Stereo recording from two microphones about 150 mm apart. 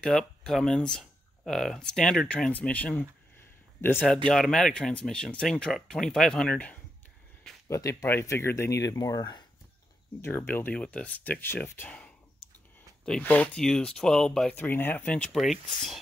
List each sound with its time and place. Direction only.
0.0 s speech: 5° left (ahead or behind)
7.6 s speech: 20° left (ahead or behind)
10.2 s speech: 15° left (ahead or behind)